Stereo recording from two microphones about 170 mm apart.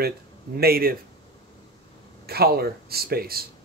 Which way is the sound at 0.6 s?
60° right (ahead or behind).